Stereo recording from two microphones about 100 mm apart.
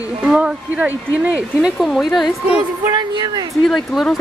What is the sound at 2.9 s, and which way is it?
Speech, 45° right (ahead or behind).